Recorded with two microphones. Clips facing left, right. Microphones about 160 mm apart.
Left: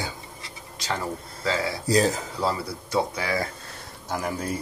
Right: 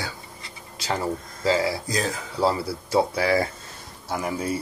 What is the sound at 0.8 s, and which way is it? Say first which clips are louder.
Speech: right 3 dB; 30° right (ahead or behind).